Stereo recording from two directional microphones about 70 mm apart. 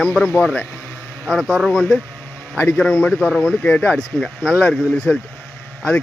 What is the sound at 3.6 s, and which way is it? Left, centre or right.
Speech, left.